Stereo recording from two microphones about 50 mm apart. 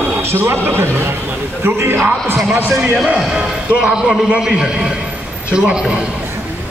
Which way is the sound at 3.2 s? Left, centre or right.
Centre.